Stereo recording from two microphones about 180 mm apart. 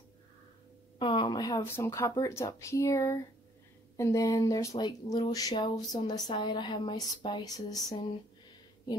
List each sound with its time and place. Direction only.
0.9 s speech: 25° left (ahead or behind)